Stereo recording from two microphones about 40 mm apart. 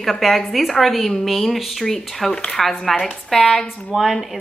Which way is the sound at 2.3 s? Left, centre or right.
Centre.